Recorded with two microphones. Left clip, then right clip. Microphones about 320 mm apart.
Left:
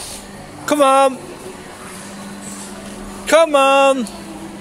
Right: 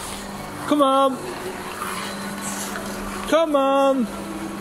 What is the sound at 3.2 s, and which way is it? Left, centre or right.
Speech, left.